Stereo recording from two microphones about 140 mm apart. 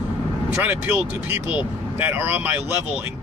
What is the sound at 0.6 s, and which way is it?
Speech, 15° right (ahead or behind).